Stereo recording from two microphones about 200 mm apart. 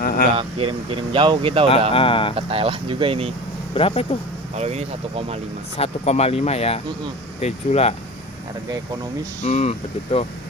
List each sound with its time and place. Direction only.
0.0 s speech: 45° left (ahead or behind)
0.4 s speech: 25° right (ahead or behind)
2.0 s speech: 25° left (ahead or behind)
2.3 s speech: 30° right (ahead or behind)
3.7 s speech: 30° left (ahead or behind)
4.6 s speech: 30° right (ahead or behind)
5.8 s speech: 30° left (ahead or behind)
9.4 s speech: 35° left (ahead or behind)